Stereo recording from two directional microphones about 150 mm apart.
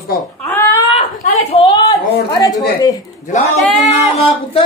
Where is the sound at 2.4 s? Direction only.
25° left (ahead or behind).